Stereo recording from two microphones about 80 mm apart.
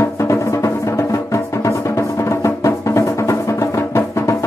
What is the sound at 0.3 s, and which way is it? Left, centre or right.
Music, left.